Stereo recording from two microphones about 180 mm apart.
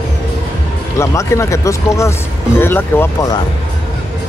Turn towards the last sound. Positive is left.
turn(degrees=10)  # may be behind; listen again after turning